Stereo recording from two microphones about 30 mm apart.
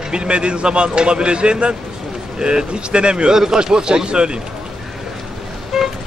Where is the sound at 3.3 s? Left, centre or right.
Right.